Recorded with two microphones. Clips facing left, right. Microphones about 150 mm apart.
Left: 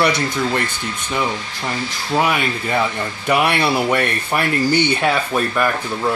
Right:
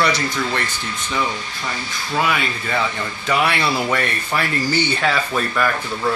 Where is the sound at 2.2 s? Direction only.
15° left (ahead or behind).